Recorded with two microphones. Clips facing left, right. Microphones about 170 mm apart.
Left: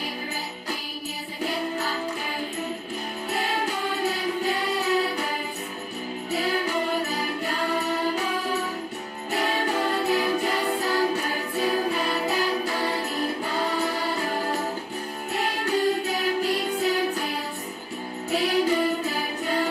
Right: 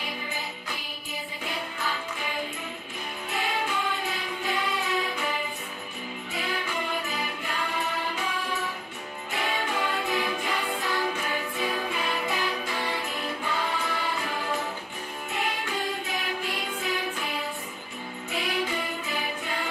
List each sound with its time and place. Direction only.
1.4 s music: 40° left (ahead or behind)
3.3 s music: 40° left (ahead or behind)
6.3 s music: 40° left (ahead or behind)
9.3 s music: 40° left (ahead or behind)
15.6 s music: 40° left (ahead or behind)
18.3 s music: 40° left (ahead or behind)